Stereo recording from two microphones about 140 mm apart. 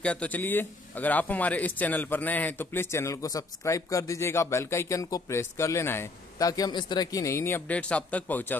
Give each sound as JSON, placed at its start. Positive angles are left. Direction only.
{"t": 0.0, "sound": "speech", "side_deg": 10}